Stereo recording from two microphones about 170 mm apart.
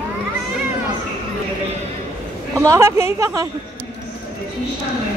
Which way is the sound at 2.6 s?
15° right (ahead or behind).